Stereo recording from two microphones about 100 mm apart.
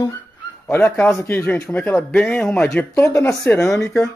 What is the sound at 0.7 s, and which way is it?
A man's voice, 20° left (ahead or behind).